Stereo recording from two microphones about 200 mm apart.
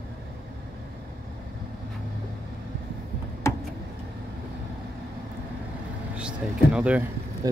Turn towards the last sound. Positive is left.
turn(degrees=-20)  # may be behind; listen again after turning